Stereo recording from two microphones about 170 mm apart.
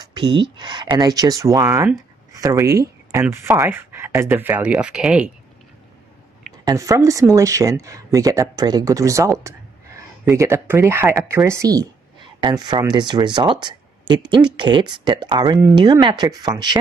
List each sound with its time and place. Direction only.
0.0 s speech: 25° right (ahead or behind); by 5.3 s 5° right (ahead or behind)
6.6 s speech: 20° right (ahead or behind)